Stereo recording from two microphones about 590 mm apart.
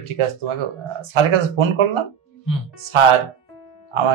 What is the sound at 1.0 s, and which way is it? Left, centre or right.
Speech, right.